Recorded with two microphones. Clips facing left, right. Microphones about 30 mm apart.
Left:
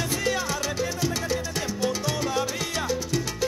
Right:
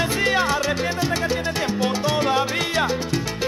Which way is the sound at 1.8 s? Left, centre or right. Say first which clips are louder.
Right 4 dB; right.